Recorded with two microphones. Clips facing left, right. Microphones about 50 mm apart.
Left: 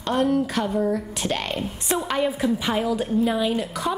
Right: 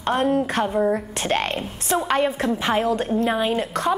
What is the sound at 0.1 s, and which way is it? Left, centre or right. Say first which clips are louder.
A woman's voice: right 1 dB; right.